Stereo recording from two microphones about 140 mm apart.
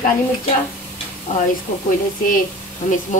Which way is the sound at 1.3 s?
60° left (ahead or behind).